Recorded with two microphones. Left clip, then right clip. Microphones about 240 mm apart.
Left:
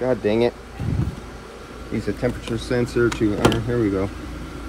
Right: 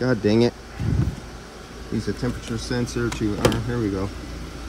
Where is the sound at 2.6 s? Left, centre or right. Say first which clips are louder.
Left 6 dB; centre.